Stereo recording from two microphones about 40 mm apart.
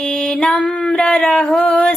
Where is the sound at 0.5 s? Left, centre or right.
Left.